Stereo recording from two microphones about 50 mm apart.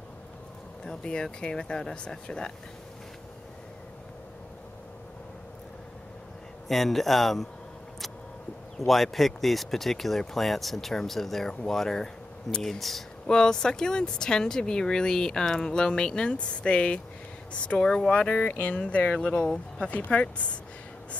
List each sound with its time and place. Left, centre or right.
0.8 s speech: centre
6.7 s speech: centre
8.7 s speech: centre; by 18.4 s left
18.4 s speech: left